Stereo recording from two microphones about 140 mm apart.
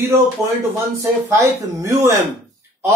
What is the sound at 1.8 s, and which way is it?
Speech, 20° right (ahead or behind).